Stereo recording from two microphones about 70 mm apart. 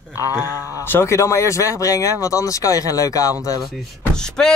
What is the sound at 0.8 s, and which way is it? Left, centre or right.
Speech, left.